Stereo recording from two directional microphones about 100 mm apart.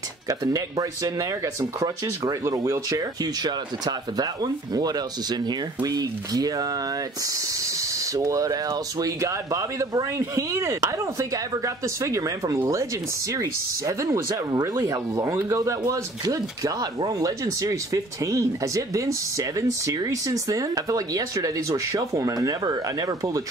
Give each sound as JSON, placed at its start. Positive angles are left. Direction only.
{"t": 0.3, "sound": "speech", "side_deg": -35}